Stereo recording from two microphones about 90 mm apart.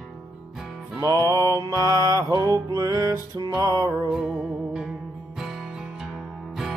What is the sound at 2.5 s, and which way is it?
Music, 40° right (ahead or behind).